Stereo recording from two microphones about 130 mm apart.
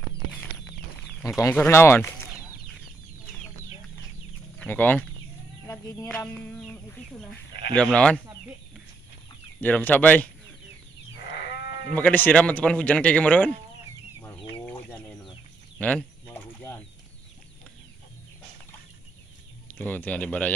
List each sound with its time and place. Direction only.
1.2 s speech: 25° left (ahead or behind)
4.6 s speech: 15° left (ahead or behind)
5.7 s a sound: 20° left (ahead or behind)
6.0 s speech: 5° left (ahead or behind)
9.6 s speech: 15° left (ahead or behind)
11.9 s speech: 15° left (ahead or behind)
14.2 s chicken: 15° left (ahead or behind)
15.8 s speech: 10° left (ahead or behind)
16.3 s mechanisms: 20° left (ahead or behind)
19.7 s speech: 15° left (ahead or behind)